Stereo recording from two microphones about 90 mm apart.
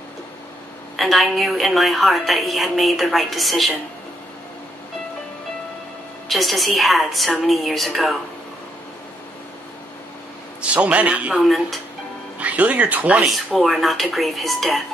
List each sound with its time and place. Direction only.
0.9 s a woman's voice: centre (ahead or behind)
6.2 s a woman's voice: centre (ahead or behind)
10.6 s a man's voice: 15° right (ahead or behind)
11.4 s a woman's voice: centre (ahead or behind)
12.4 s speech: 15° right (ahead or behind)
13.2 s a woman's voice: 5° right (ahead or behind)